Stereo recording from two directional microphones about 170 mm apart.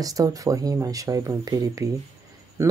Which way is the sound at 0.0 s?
20° right (ahead or behind).